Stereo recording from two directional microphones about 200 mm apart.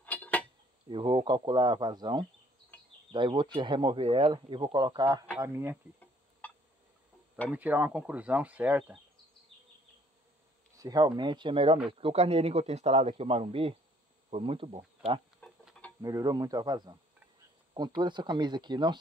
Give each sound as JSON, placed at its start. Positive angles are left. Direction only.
{"t": 0.0, "sound": "insect", "side_deg": 5}
{"t": 0.8, "sound": "speech", "side_deg": -25}
{"t": 2.7, "sound": "insect", "side_deg": 10}
{"t": 3.1, "sound": "speech", "side_deg": -25}
{"t": 6.4, "sound": "a sound", "side_deg": 10}
{"t": 7.4, "sound": "speech", "side_deg": -10}
{"t": 10.8, "sound": "speech", "side_deg": -20}
{"t": 15.4, "sound": "chicken", "side_deg": 5}
{"t": 16.0, "sound": "speech", "side_deg": -15}